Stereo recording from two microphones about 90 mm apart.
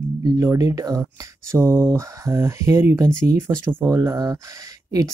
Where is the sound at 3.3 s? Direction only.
25° right (ahead or behind); by 4.4 s 40° right (ahead or behind).